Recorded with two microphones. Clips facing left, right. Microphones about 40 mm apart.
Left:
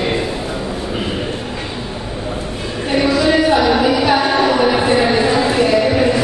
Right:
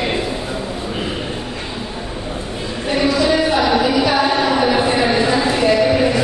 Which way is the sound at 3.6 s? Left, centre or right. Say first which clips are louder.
Left 1 dB; centre.